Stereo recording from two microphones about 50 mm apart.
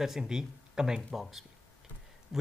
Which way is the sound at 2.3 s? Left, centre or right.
Centre.